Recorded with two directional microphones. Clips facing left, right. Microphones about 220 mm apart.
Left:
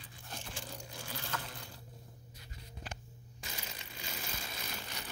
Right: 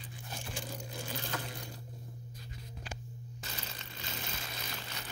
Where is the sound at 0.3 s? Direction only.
15° right (ahead or behind).